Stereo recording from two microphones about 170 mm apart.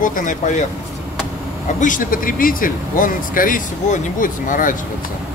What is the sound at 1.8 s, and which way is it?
Speech, 50° left (ahead or behind).